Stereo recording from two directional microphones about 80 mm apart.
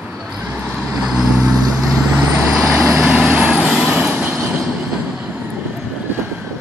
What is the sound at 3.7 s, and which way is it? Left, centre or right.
Vehicle, centre.